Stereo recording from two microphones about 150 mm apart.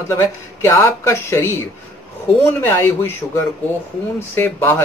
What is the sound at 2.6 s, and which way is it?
A man's voice, 15° left (ahead or behind).